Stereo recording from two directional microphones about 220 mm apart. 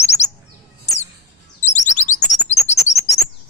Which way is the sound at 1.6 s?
35° left (ahead or behind).